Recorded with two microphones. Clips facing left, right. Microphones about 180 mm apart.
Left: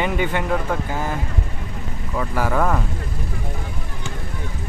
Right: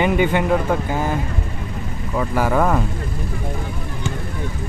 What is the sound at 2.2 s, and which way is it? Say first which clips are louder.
Speech: right 3 dB; 20° right (ahead or behind).